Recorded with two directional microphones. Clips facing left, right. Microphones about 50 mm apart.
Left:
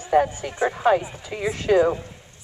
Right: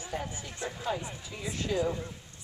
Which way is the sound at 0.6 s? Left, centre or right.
Left.